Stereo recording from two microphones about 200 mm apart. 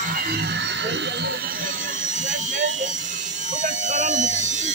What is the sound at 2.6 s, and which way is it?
Electric shaver, 40° right (ahead or behind).